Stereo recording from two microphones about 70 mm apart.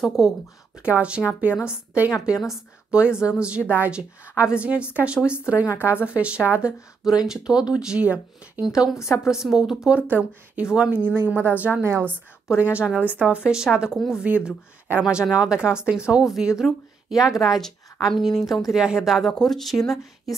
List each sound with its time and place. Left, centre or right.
0.0 s a woman's voice: centre
0.7 s speech: centre
1.5 s a woman's voice: left
2.4 s a woman's voice: centre
8.6 s a woman's voice: centre
8.9 s a woman's voice: left
9.3 s a woman's voice: centre
10.0 s a woman's voice: right; by 17.6 s centre
17.6 s a sound: centre
18.1 s a woman's voice: centre